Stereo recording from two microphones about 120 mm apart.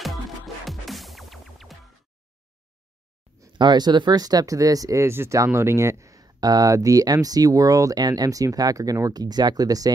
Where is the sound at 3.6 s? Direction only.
40° right (ahead or behind); by 5.9 s 20° right (ahead or behind).